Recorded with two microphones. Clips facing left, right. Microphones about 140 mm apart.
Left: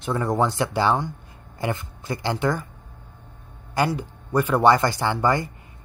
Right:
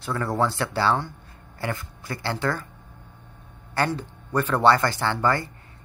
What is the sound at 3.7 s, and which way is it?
Speech, 10° left (ahead or behind).